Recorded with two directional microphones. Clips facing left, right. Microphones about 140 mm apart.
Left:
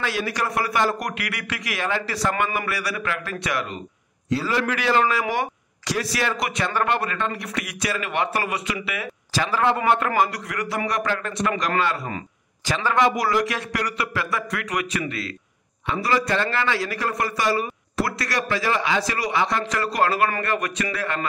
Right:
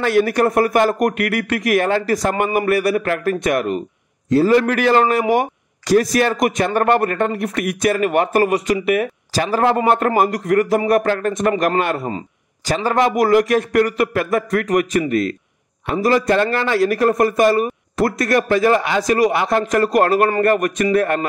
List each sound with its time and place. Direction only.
0.0 s a man's voice: 55° right (ahead or behind)
12.6 s a man's voice: 40° right (ahead or behind)